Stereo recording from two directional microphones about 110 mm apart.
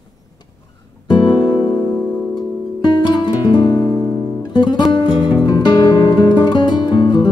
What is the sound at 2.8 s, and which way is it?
Music, 40° left (ahead or behind).